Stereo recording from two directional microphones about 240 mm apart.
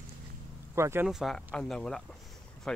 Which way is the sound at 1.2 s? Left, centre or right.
Centre.